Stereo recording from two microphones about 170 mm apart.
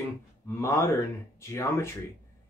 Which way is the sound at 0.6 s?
15° left (ahead or behind).